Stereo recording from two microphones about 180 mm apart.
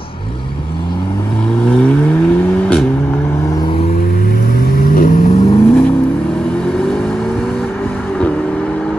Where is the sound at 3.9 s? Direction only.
55° left (ahead or behind).